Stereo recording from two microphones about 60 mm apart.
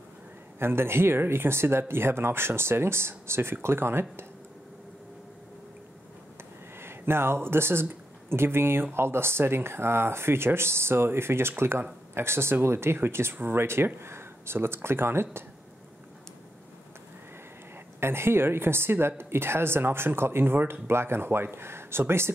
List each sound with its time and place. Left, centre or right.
0.6 s a woman's voice: right
6.8 s speech: right
18.0 s a woman's voice: right